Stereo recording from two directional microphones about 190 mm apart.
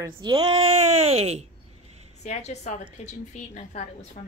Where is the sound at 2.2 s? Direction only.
35° left (ahead or behind).